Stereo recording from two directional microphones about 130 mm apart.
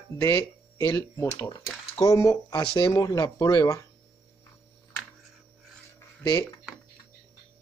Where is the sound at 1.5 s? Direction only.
30° left (ahead or behind).